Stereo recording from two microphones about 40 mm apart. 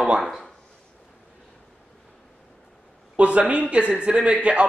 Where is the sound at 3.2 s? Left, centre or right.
Right.